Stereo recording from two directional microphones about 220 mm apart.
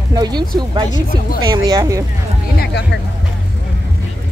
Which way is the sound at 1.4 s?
20° right (ahead or behind).